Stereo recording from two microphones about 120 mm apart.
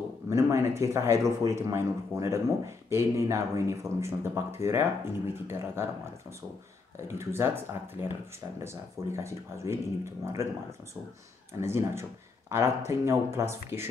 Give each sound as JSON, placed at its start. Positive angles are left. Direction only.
{"t": 0.3, "sound": "speech", "side_deg": -25}
{"t": 7.1, "sound": "speech", "side_deg": -20}
{"t": 11.6, "sound": "speech", "side_deg": -20}